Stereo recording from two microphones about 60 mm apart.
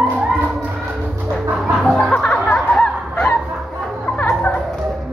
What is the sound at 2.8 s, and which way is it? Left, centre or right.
Honk, centre.